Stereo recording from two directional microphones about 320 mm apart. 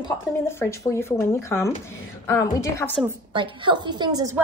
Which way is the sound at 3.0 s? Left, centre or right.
Centre.